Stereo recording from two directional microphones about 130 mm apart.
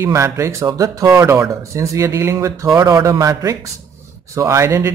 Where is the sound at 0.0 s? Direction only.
20° right (ahead or behind).